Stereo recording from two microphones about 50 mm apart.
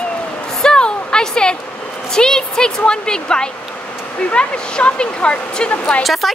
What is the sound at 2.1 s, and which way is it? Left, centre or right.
Speech, centre.